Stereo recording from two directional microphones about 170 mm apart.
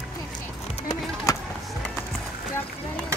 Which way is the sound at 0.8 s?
20° left (ahead or behind).